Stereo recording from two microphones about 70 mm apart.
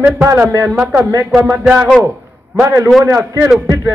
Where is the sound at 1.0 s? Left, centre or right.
Right.